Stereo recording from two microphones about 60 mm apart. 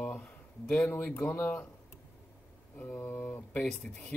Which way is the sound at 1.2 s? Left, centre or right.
Left.